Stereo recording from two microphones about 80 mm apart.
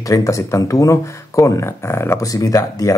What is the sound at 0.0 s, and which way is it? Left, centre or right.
Speech, left.